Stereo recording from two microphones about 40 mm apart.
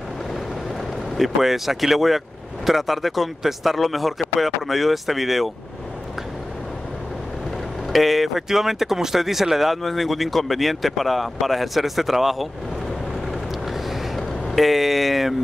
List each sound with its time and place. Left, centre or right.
1.1 s speech: centre
7.9 s speech: centre
13.7 s a sound: centre